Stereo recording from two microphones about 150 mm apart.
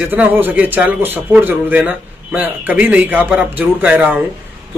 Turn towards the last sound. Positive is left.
turn(degrees=-10)  # may be behind; listen again after turning